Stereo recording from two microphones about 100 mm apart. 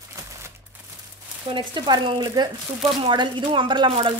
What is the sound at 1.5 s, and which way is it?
Speech, 50° right (ahead or behind).